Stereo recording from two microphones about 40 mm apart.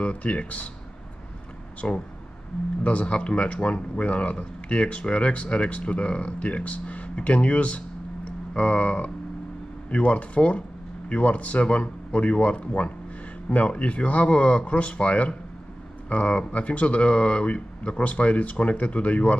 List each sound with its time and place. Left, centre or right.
0.0 s speech: left
1.8 s speech: left